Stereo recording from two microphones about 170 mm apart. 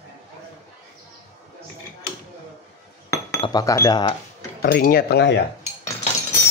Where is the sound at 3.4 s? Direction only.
20° left (ahead or behind).